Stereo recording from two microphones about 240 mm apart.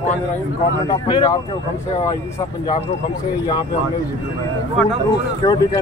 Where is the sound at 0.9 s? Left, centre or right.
Centre.